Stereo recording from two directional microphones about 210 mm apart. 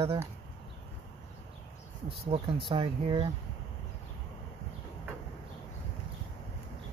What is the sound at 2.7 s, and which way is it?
Speech, 25° right (ahead or behind).